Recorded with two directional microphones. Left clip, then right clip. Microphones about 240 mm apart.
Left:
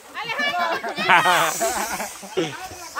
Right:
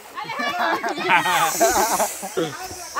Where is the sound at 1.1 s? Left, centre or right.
Centre.